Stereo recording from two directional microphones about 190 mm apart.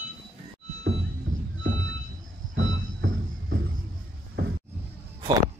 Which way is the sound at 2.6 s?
90° right.